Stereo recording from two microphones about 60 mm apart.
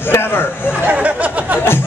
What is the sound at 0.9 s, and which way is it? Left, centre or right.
Speech, right.